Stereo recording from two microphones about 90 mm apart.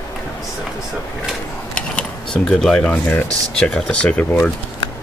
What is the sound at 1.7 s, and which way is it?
Computer keyboard, 10° left (ahead or behind).